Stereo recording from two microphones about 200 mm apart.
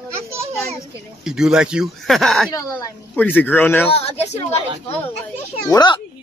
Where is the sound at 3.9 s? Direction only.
30° left (ahead or behind).